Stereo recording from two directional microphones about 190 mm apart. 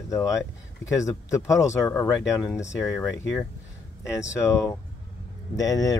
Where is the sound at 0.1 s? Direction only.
15° left (ahead or behind).